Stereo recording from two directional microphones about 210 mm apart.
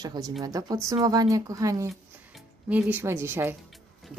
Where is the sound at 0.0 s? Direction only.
20° right (ahead or behind).